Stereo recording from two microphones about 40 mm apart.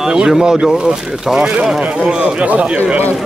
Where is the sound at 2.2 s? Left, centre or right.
Right.